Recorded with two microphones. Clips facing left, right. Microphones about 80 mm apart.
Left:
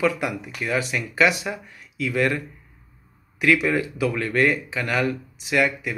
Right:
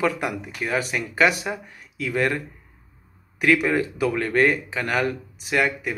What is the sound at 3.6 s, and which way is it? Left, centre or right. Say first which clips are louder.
Speech: right 1 dB; right.